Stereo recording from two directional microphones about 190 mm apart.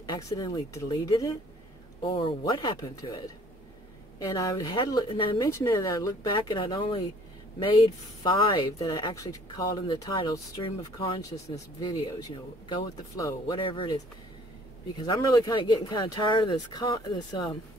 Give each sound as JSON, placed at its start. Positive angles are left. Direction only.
{"t": 0.0, "sound": "speech", "side_deg": 20}
{"t": 4.2, "sound": "speech", "side_deg": 20}
{"t": 8.2, "sound": "speech", "side_deg": 20}